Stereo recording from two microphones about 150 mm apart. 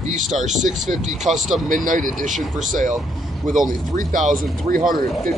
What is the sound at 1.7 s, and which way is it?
Speech, 65° right (ahead or behind).